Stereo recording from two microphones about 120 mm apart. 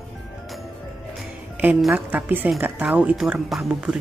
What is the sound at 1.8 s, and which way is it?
Speech, centre (ahead or behind).